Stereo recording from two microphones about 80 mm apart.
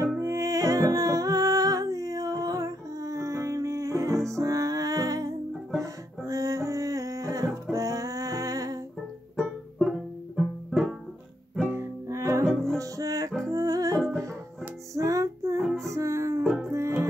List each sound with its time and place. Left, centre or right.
0.2 s music: right
9.4 s music: centre
11.6 s music: right
12.1 s music: right
13.9 s music: centre
15.0 s music: right
15.6 s music: centre
15.9 s music: right
16.4 s music: centre
16.7 s music: right